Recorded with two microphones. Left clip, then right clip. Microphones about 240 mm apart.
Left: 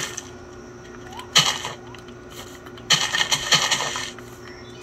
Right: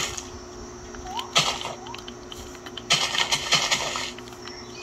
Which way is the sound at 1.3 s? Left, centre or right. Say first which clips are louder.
Left 5 dB; left.